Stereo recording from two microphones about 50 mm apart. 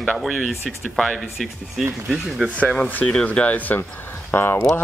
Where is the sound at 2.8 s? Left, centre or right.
Left.